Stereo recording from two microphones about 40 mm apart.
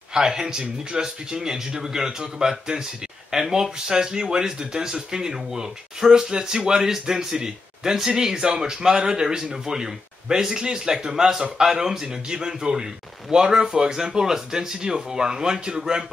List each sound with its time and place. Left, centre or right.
0.1 s speech: centre